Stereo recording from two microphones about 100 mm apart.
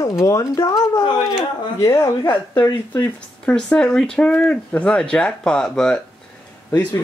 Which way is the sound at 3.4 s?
10° left (ahead or behind).